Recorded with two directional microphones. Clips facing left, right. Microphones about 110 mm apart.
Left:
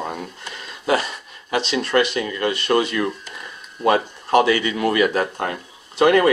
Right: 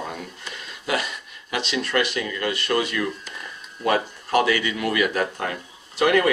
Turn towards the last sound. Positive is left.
turn(degrees=30)  # may be behind; listen again after turning